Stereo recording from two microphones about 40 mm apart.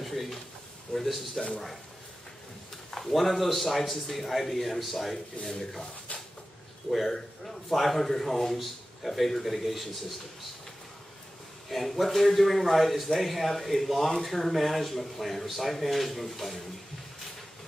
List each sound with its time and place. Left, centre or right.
0.0 s a man's voice: centre
1.3 s speech: left
2.9 s a man's voice: centre
6.9 s a man's voice: centre
11.7 s a man's voice: centre